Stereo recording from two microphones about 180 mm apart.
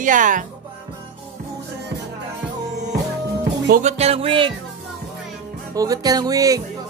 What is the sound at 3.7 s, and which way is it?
Music, 40° right (ahead or behind).